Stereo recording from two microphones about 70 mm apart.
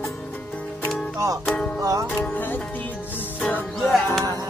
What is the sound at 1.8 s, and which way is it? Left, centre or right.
Music, right.